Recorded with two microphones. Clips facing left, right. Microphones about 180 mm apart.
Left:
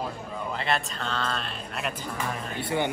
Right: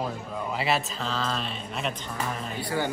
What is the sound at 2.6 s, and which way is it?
Speech, 20° left (ahead or behind).